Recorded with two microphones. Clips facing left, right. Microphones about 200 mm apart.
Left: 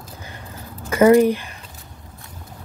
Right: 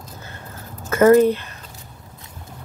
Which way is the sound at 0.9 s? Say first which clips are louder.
Even; 10° left (ahead or behind).